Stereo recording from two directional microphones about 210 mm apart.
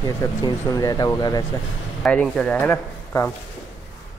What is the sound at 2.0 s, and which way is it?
Speech, centre (ahead or behind).